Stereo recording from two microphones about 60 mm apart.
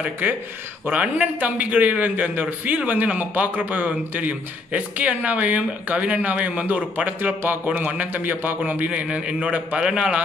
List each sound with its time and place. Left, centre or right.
0.0 s a man's voice: right
9.0 s a man's voice: centre